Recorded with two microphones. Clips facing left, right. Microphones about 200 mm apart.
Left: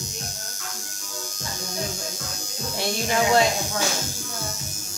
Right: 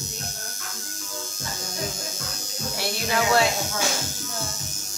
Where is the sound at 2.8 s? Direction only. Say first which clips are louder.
Left 2 dB; 15° left (ahead or behind).